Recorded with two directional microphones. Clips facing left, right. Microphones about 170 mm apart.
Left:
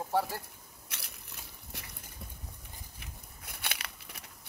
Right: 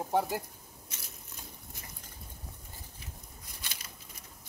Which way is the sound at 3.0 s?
65° left (ahead or behind).